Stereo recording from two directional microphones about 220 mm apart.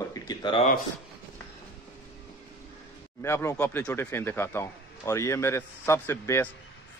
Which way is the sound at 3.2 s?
10° left (ahead or behind).